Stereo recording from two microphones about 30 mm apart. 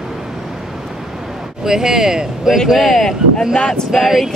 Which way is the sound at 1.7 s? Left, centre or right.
Centre.